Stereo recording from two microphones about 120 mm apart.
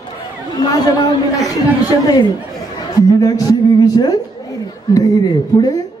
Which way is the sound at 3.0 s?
30° left (ahead or behind).